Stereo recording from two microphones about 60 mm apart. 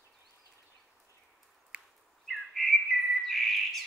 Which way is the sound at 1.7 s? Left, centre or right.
Centre.